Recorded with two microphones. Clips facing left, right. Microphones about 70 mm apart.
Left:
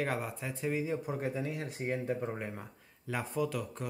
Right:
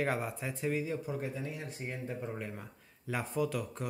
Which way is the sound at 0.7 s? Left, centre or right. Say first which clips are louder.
Left 1 dB; centre.